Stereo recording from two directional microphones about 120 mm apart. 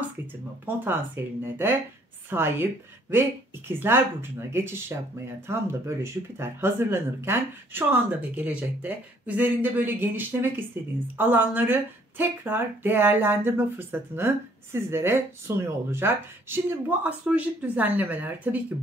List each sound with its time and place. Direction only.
0.7 s speech: 15° right (ahead or behind)